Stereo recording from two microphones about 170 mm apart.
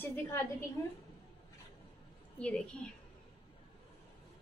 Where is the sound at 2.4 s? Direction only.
5° left (ahead or behind).